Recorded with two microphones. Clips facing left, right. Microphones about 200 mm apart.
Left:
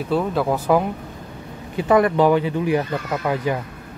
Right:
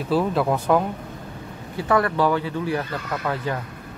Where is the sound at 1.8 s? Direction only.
20° left (ahead or behind).